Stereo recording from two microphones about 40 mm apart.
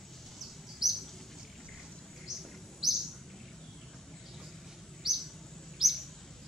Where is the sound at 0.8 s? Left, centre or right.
Centre.